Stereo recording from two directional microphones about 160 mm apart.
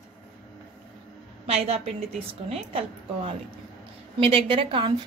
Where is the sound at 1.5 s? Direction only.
40° right (ahead or behind).